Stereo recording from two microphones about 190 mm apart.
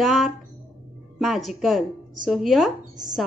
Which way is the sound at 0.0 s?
Centre (ahead or behind).